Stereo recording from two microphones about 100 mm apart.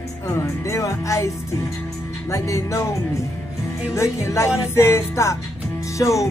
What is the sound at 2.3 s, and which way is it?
Speech, 30° left (ahead or behind).